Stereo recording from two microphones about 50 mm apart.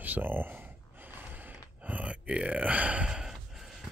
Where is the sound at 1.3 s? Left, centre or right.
Right.